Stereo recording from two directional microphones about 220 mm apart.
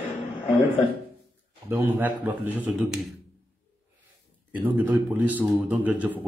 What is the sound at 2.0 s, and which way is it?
A man's voice, 10° right (ahead or behind).